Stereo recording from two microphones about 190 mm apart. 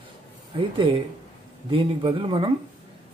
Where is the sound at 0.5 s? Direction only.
25° right (ahead or behind).